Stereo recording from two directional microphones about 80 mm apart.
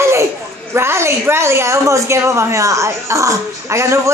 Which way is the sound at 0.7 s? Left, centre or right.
Right.